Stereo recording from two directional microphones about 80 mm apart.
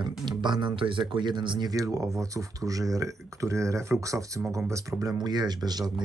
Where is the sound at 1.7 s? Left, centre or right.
Right.